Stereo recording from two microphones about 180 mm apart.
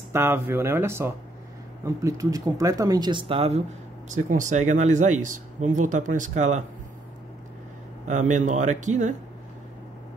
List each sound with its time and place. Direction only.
0.1 s speech: 15° right (ahead or behind); by 3.6 s 35° right (ahead or behind)
4.1 s speech: 45° right (ahead or behind)
8.1 s speech: 45° right (ahead or behind)